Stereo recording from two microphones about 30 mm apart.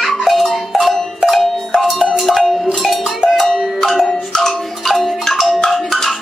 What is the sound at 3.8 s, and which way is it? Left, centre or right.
Music, centre.